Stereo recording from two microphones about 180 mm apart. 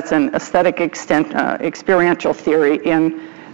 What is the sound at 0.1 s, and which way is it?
Speech, 10° right (ahead or behind).